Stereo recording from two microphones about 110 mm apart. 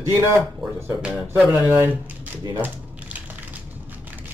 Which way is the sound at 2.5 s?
15° right (ahead or behind).